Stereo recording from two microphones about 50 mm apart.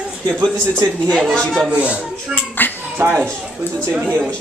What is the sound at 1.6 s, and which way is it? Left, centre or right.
Speech, right.